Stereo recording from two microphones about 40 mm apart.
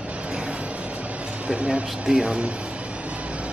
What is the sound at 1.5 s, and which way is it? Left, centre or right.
Speech, right.